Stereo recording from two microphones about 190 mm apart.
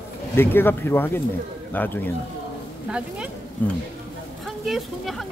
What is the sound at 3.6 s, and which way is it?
Speech, 10° left (ahead or behind).